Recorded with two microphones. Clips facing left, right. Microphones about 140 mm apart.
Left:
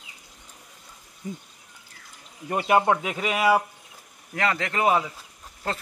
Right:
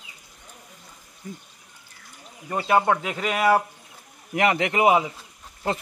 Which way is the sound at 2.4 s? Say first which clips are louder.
Even; 15° left (ahead or behind).